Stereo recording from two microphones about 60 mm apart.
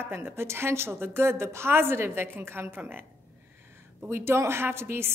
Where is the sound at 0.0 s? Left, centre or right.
Right.